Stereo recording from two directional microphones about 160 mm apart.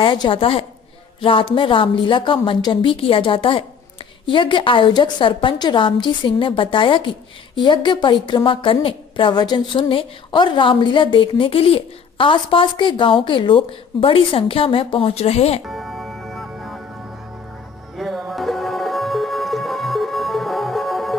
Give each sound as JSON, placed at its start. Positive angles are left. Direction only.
{"t": 0.0, "sound": "a woman's voice", "side_deg": 30}
{"t": 15.6, "sound": "music", "side_deg": 0}
{"t": 17.9, "sound": "music", "side_deg": 0}